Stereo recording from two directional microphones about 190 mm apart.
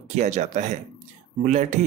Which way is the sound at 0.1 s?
40° right (ahead or behind).